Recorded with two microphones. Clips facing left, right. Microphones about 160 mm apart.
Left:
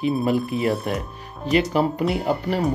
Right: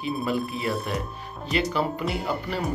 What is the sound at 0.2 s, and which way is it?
Speech, 45° left (ahead or behind).